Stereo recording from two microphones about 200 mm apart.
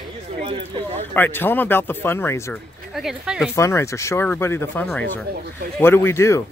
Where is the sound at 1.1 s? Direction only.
10° left (ahead or behind).